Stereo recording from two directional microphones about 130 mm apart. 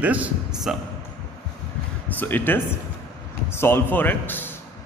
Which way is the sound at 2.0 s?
15° left (ahead or behind).